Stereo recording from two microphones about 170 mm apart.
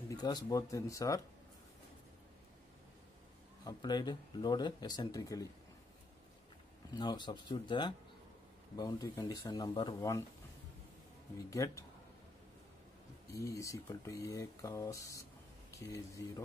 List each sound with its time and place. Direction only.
0.1 s speech: 25° left (ahead or behind)
3.6 s speech: 25° left (ahead or behind)
6.9 s speech: 25° left (ahead or behind)
11.5 s speech: 20° left (ahead or behind)
13.3 s speech: 20° left (ahead or behind)